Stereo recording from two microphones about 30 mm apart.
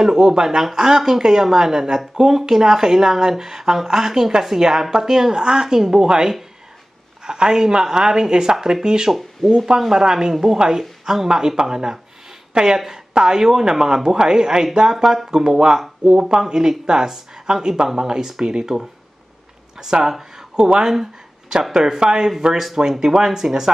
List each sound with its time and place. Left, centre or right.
0.0 s speech: centre
9.8 s speech: centre
10.0 s speech: right
10.3 s speech: centre
16.1 s speech: right
16.3 s speech: centre
20.9 s a sound: centre
21.7 s speech: centre